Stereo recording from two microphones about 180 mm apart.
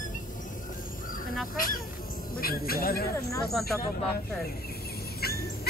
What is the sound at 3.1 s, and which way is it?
Speech, 15° left (ahead or behind).